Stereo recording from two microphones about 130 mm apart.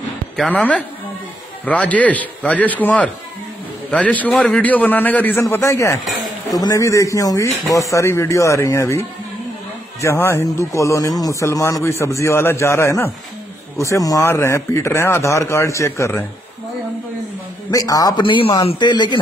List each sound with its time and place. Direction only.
0.5 s a man's voice: 10° left (ahead or behind)
17.6 s speech: 30° left (ahead or behind)
18.2 s speech: 40° left (ahead or behind)